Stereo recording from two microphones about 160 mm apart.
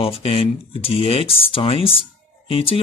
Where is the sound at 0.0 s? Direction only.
35° left (ahead or behind).